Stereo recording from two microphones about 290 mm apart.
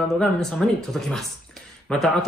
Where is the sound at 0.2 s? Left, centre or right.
Centre.